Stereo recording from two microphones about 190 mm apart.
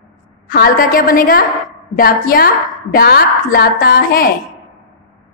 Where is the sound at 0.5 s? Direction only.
50° left (ahead or behind).